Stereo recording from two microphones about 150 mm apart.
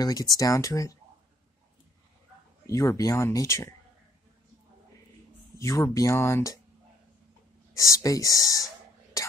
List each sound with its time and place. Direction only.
0.0 s speech: 25° left (ahead or behind)
2.6 s speech: 20° left (ahead or behind)
5.6 s speech: 20° left (ahead or behind)
7.7 s speech: 20° left (ahead or behind)
9.1 s whispering: 20° left (ahead or behind)